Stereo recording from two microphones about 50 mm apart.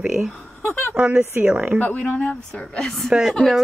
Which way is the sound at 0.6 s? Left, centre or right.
Left.